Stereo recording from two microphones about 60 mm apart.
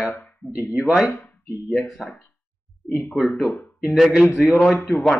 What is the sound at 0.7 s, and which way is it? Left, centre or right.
Speech, centre.